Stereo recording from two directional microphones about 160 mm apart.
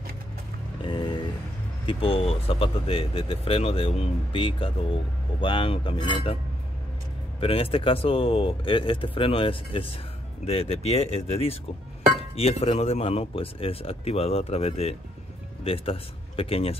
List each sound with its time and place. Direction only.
0.8 s vehicle: 30° left (ahead or behind)
1.9 s speech: 35° left (ahead or behind)
7.3 s speech: 35° left (ahead or behind)